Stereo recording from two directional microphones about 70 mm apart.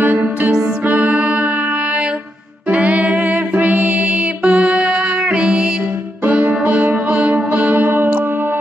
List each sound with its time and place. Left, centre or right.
0.0 s music: right
2.7 s music: centre